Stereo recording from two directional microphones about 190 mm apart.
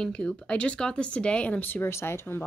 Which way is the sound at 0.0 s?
5° left (ahead or behind).